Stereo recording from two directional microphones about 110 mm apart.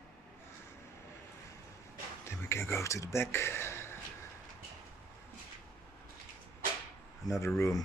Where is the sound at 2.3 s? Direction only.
25° left (ahead or behind).